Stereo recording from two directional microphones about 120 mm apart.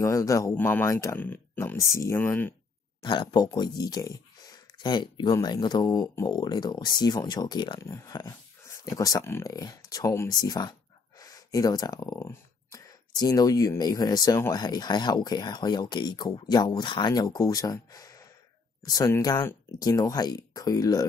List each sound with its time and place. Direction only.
0.0 s speech: 25° left (ahead or behind)
3.0 s speech: 40° left (ahead or behind)
7.8 s speech: 25° left (ahead or behind)